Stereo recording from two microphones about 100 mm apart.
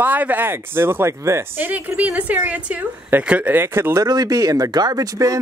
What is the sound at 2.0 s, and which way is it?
A woman's voice, 15° right (ahead or behind).